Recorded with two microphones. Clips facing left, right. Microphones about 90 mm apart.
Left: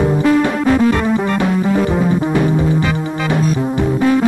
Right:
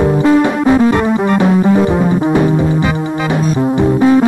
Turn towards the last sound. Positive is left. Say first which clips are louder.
# right 4 dB
turn(degrees=-20)  # may be behind; listen again after turning